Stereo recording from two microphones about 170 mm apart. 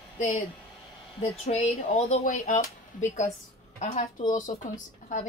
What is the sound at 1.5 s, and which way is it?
Speech, 40° left (ahead or behind).